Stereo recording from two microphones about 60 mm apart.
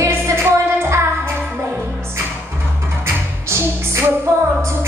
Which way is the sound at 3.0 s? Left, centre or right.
Right.